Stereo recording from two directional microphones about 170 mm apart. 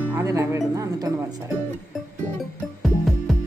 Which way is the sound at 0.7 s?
20° right (ahead or behind).